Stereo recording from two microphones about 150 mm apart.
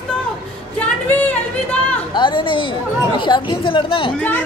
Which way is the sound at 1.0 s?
10° left (ahead or behind).